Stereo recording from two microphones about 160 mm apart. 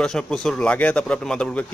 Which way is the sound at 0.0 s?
5° left (ahead or behind).